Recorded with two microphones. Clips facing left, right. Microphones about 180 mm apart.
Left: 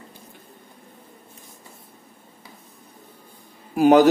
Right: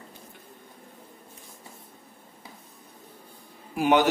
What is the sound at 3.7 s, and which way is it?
Speech, 40° left (ahead or behind).